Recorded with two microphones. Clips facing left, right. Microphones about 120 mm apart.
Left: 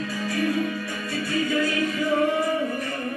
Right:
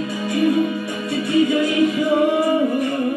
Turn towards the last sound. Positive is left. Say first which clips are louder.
# right 8 dB
turn(degrees=-20)  # may be behind; listen again after turning